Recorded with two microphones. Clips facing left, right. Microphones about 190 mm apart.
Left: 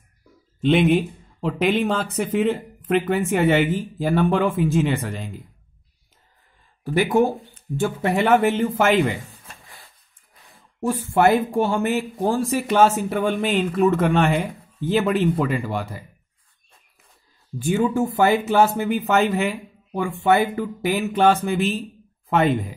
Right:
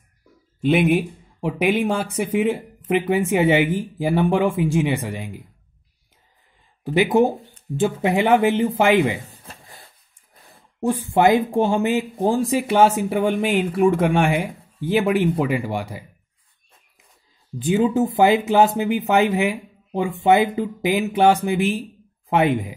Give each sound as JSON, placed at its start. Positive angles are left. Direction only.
{"t": 0.6, "sound": "speech", "side_deg": -10}
{"t": 6.8, "sound": "speech", "side_deg": -20}
{"t": 9.3, "sound": "a sound", "side_deg": -30}
{"t": 10.8, "sound": "speech", "side_deg": -15}
{"t": 17.6, "sound": "speech", "side_deg": -20}